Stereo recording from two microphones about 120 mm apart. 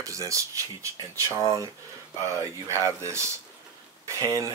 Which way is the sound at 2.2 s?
25° right (ahead or behind).